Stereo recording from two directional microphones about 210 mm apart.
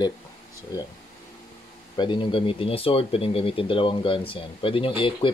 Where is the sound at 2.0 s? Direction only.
25° left (ahead or behind).